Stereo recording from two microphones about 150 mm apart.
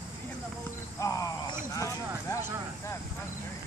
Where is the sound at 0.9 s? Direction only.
20° left (ahead or behind).